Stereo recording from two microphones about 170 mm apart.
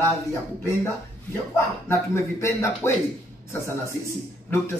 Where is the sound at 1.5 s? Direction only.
15° left (ahead or behind).